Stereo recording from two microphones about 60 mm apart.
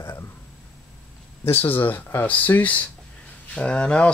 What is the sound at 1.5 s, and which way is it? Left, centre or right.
Speech, left.